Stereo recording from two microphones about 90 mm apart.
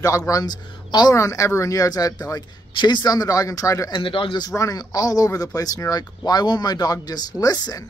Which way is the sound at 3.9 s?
75° left (ahead or behind).